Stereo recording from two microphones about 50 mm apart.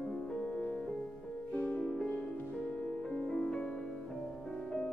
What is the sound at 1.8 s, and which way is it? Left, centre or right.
Music, centre.